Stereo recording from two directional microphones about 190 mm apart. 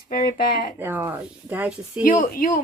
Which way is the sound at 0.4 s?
50° left (ahead or behind).